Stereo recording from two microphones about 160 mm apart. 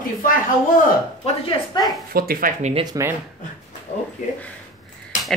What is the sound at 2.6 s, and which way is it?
Speech, 45° right (ahead or behind).